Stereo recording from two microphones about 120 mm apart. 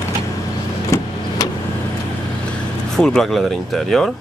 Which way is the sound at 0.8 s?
30° left (ahead or behind).